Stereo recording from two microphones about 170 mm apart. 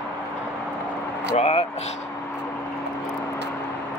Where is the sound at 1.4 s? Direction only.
35° left (ahead or behind).